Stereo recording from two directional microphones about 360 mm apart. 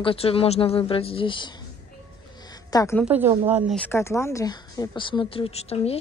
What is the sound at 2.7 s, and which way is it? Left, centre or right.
Speech, centre.